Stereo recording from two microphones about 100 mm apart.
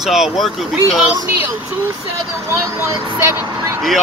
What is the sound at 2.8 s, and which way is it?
Speech, 25° right (ahead or behind).